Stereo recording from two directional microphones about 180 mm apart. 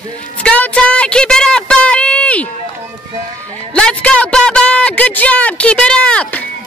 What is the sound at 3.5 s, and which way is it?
A man's voice, 5° left (ahead or behind).